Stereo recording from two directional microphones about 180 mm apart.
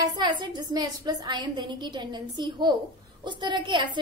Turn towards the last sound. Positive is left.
turn(degrees=-25)  # may be behind; listen again after turning